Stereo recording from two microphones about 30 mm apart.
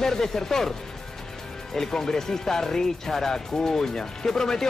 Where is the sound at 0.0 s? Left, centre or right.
Centre.